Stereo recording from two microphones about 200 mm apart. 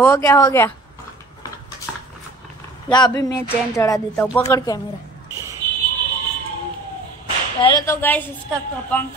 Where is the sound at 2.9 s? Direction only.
20° left (ahead or behind).